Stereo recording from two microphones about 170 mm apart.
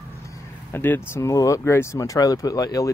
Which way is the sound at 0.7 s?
15° left (ahead or behind).